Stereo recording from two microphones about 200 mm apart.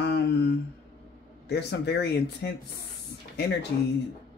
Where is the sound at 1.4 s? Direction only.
55° left (ahead or behind).